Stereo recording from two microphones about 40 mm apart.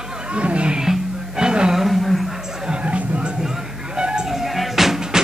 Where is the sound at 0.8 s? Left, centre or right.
Centre.